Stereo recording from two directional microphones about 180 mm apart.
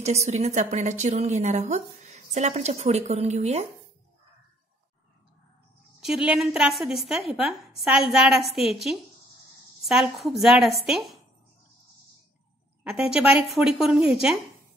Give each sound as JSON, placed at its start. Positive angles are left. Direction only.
{"t": 0.0, "sound": "a woman's voice", "side_deg": -40}
{"t": 5.9, "sound": "a woman's voice", "side_deg": -5}
{"t": 12.8, "sound": "a woman's voice", "side_deg": -5}